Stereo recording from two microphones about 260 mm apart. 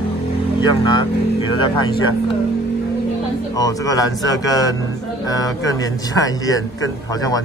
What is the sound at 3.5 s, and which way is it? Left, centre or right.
A man's voice, centre.